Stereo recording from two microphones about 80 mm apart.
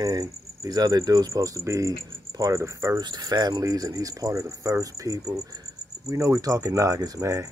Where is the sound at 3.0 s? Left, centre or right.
Right.